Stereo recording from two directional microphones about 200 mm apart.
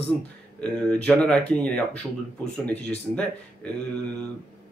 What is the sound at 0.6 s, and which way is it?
Speech, 5° left (ahead or behind).